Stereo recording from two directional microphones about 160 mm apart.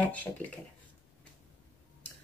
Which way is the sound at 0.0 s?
10° left (ahead or behind).